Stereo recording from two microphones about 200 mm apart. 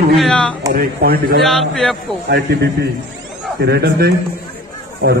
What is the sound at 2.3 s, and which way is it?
Speech, 55° right (ahead or behind).